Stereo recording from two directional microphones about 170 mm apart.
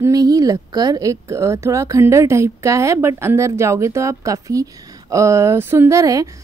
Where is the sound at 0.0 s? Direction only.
20° right (ahead or behind).